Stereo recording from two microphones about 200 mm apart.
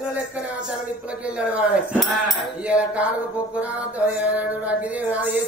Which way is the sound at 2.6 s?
5° right (ahead or behind).